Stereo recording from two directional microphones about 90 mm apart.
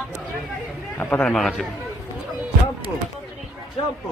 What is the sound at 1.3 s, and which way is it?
Speech, 5° left (ahead or behind).